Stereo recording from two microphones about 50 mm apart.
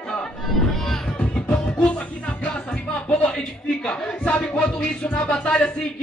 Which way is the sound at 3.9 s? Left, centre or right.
Left.